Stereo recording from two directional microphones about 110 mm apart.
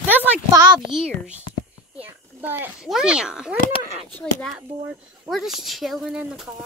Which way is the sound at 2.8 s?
5° right (ahead or behind).